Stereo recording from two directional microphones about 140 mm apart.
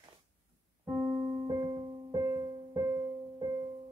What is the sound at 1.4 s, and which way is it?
Music, 30° right (ahead or behind).